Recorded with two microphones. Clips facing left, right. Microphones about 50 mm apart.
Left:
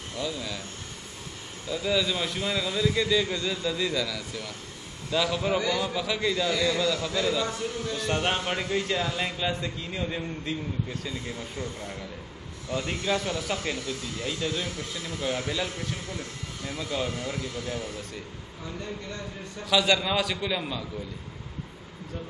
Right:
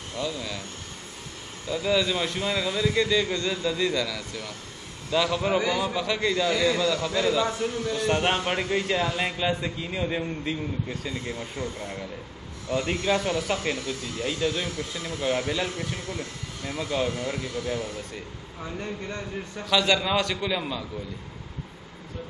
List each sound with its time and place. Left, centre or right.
0.2 s a man's voice: centre
1.7 s a man's voice: centre
5.6 s a man's voice: centre
5.9 s a man's voice: centre
7.4 s a man's voice: right
18.6 s speech: right
19.6 s a man's voice: centre